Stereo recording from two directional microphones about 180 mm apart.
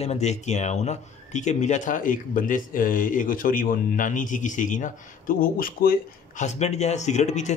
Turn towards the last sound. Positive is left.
turn(degrees=40)  # may be behind; listen again after turning